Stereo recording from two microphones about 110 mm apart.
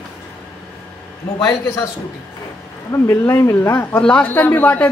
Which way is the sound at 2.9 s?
25° left (ahead or behind).